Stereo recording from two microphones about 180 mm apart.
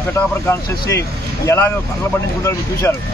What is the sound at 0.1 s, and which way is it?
A man's voice, 15° left (ahead or behind).